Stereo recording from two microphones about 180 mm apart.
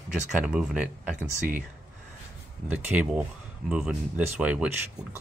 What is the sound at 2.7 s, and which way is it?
Speech, 5° right (ahead or behind).